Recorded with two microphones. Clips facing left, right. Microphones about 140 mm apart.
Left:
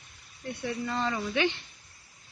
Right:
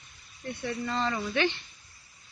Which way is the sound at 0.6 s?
10° left (ahead or behind).